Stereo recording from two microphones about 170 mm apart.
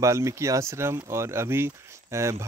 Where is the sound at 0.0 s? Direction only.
15° right (ahead or behind).